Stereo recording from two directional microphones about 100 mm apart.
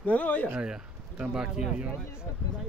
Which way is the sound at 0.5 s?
10° right (ahead or behind).